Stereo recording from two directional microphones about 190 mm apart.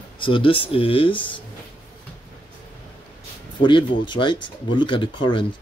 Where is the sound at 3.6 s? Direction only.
25° left (ahead or behind).